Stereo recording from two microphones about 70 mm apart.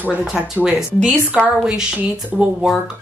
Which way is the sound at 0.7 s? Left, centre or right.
Centre.